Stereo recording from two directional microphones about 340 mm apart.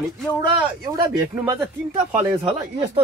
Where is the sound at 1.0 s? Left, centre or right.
Centre.